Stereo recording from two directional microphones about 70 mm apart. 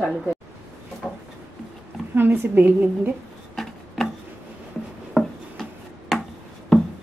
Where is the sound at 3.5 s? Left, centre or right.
Centre.